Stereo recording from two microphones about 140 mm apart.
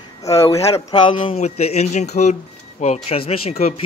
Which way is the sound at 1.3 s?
50° left (ahead or behind).